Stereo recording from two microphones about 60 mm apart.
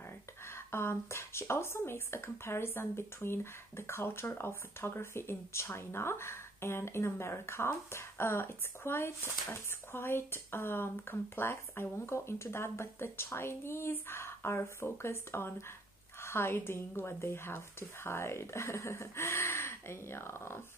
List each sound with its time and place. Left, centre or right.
0.5 s speech: left